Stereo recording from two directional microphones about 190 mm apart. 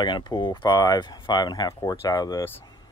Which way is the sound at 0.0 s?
25° left (ahead or behind).